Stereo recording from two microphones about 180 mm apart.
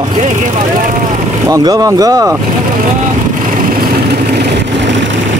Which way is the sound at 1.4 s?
20° right (ahead or behind).